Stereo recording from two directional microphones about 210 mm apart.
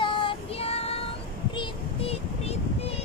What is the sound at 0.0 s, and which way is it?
Child singing, 25° left (ahead or behind).